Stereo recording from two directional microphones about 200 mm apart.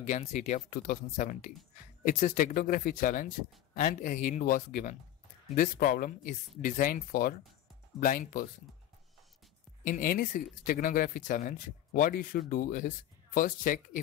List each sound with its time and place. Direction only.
0.0 s speech: 35° left (ahead or behind)
9.8 s speech: 45° left (ahead or behind)